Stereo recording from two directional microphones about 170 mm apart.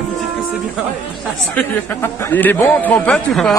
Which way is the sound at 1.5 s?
10° left (ahead or behind).